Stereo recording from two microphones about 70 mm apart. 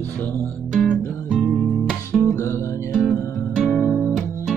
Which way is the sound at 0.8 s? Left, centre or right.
Centre.